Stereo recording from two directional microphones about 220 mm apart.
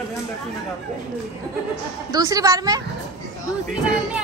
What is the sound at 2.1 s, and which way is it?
Speech, 15° right (ahead or behind).